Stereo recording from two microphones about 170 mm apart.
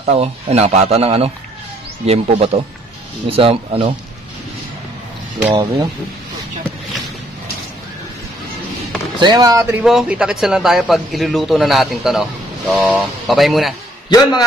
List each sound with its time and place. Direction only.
0.0 s speech: 40° right (ahead or behind)
5.5 s speech: 25° right (ahead or behind)
9.2 s a man's voice: 25° right (ahead or behind); by 13.7 s centre (ahead or behind)
14.0 s a man's voice: 25° left (ahead or behind)